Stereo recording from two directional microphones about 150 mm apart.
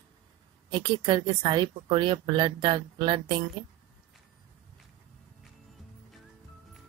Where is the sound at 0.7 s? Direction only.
30° right (ahead or behind).